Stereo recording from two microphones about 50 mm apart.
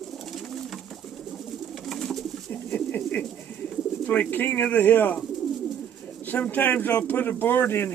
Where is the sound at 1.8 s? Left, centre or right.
Centre.